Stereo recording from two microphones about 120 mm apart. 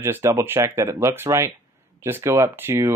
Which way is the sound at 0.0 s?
20° right (ahead or behind).